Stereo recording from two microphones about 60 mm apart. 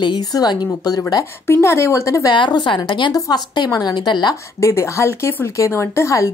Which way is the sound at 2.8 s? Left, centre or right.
Left.